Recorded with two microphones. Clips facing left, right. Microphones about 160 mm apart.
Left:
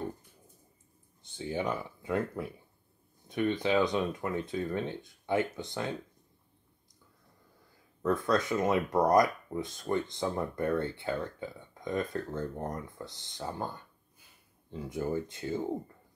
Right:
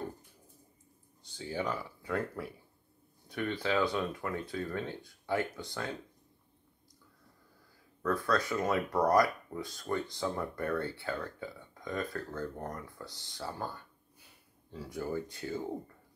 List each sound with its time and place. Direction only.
1.3 s speech: 20° left (ahead or behind)
8.0 s speech: 20° left (ahead or behind)